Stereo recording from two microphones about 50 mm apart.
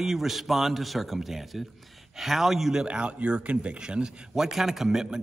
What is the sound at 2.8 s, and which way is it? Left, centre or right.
Speech, centre.